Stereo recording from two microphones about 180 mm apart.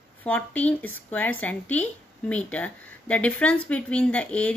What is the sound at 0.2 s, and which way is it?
Speech, 10° left (ahead or behind).